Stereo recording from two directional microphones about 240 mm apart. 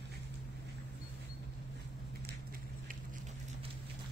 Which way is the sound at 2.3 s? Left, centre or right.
Right.